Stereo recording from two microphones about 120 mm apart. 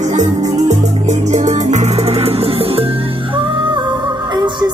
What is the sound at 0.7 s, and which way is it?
Music, 80° right.